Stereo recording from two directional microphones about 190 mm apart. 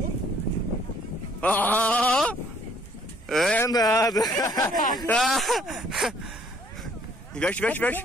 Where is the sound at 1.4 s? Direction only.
10° left (ahead or behind).